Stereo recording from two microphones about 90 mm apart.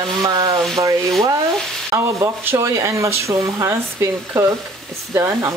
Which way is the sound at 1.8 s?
35° right (ahead or behind).